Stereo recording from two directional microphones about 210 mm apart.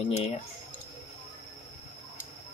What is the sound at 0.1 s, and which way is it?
Speech, 30° left (ahead or behind).